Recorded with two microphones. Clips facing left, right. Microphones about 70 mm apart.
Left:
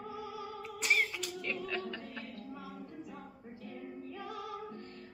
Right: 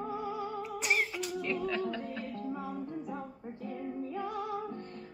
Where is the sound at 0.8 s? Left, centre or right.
Centre.